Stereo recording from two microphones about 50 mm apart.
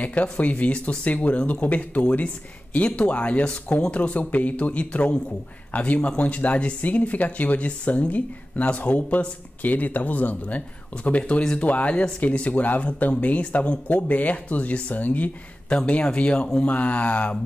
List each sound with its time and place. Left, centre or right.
0.0 s speech: left